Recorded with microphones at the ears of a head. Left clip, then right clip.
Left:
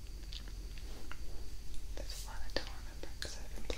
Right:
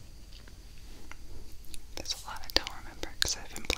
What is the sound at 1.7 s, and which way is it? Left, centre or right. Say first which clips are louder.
Whispering: right 11 dB; right.